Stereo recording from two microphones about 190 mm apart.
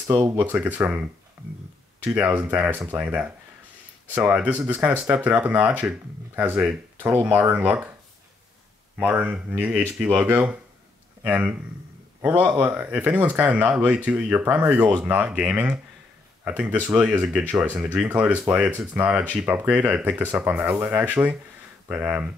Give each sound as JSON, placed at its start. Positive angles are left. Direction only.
{"t": 0.0, "sound": "speech", "side_deg": -15}
{"t": 1.4, "sound": "a sound", "side_deg": -10}
{"t": 2.0, "sound": "speech", "side_deg": -10}
{"t": 9.0, "sound": "speech", "side_deg": -10}